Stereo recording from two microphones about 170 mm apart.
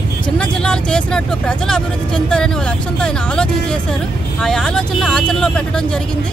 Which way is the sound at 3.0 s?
5° left (ahead or behind).